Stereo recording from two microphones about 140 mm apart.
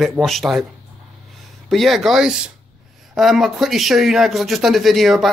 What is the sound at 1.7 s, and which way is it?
Speech, centre (ahead or behind).